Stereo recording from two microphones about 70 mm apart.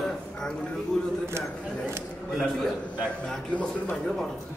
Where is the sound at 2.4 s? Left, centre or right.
Centre.